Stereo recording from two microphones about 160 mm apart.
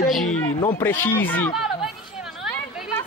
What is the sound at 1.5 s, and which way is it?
Chatter, centre (ahead or behind).